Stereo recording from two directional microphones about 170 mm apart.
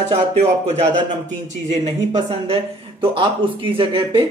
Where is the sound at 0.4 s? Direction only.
40° right (ahead or behind).